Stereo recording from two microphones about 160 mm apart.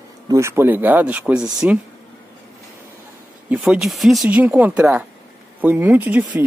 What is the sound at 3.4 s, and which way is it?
Speech, 5° right (ahead or behind).